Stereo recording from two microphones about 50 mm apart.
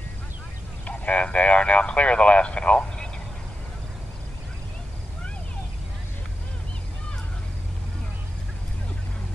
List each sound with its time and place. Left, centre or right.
0.8 s speech: left